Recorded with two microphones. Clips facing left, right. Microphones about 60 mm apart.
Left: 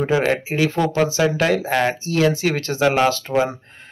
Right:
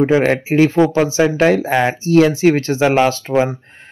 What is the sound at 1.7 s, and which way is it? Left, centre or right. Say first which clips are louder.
Speech: right 3 dB; centre.